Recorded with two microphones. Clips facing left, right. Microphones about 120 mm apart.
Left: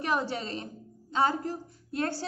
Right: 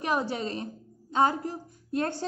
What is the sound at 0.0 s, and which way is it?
A woman's voice, 15° right (ahead or behind).